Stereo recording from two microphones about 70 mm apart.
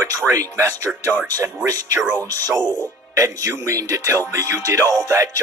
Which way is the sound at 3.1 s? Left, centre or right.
Right.